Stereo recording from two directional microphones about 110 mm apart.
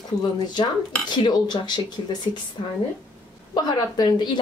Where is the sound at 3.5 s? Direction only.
40° left (ahead or behind).